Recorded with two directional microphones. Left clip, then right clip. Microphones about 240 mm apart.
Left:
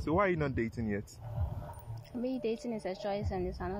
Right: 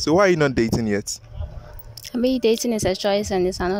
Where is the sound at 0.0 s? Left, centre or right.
Right.